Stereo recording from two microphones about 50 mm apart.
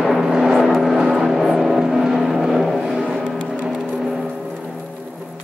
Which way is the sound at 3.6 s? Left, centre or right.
Centre.